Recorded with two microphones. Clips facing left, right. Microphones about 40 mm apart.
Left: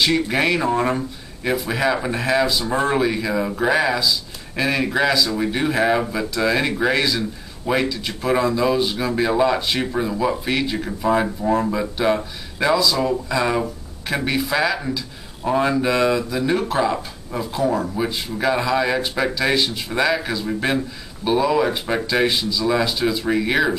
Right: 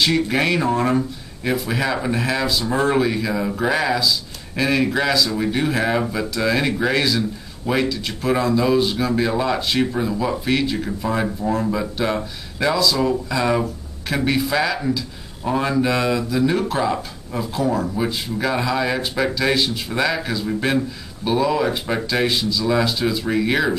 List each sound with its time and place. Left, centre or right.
0.0 s speech: centre